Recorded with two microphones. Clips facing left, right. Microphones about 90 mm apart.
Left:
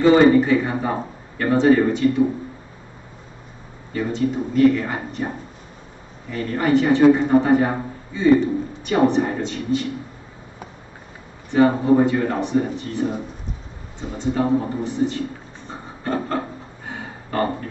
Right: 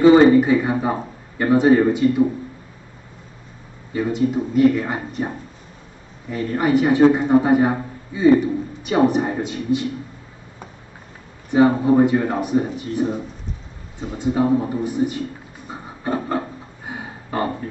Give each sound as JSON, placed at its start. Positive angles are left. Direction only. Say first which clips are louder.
{"t": 0.0, "sound": "a man's voice", "louder": "right 2 dB", "side_deg": -15}
{"t": 3.9, "sound": "a man's voice", "louder": "right 2 dB", "side_deg": -15}
{"t": 6.3, "sound": "a man's voice", "louder": "even", "side_deg": -15}
{"t": 11.5, "sound": "a man's voice", "louder": "right 1 dB", "side_deg": -15}
{"t": 14.1, "sound": "a sound", "louder": "right 2 dB", "side_deg": -15}